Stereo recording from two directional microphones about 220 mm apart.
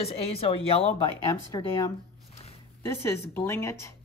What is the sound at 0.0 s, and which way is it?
Speech, 25° left (ahead or behind).